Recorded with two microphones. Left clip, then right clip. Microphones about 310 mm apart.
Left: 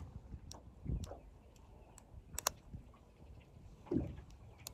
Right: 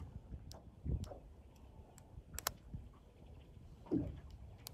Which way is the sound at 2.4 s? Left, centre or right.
Centre.